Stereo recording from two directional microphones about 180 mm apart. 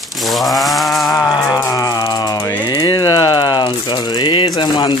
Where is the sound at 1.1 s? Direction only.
20° left (ahead or behind).